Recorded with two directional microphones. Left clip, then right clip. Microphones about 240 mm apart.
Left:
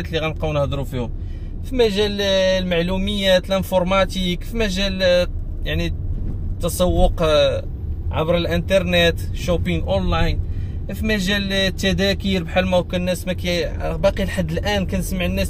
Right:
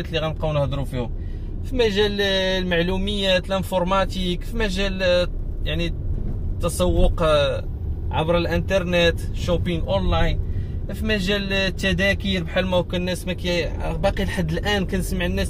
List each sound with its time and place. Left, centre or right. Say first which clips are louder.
0.1 s a man's voice: left 2 dB; left
6.6 s a man's voice: left 3 dB; centre